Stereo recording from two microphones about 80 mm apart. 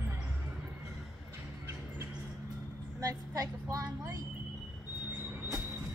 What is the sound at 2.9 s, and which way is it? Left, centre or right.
Vehicle, right.